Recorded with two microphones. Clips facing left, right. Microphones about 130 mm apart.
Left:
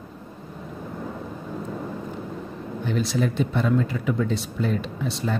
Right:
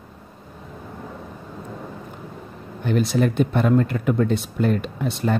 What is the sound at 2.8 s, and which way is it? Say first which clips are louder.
Speech: right 4 dB; 55° right (ahead or behind).